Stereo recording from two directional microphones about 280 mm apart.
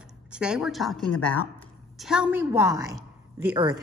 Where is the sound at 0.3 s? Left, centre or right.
Centre.